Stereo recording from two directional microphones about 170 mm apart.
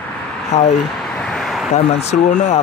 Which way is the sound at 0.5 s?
40° left (ahead or behind).